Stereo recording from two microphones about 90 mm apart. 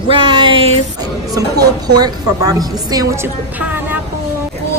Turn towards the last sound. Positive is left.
turn(degrees=-20)  # may be behind; listen again after turning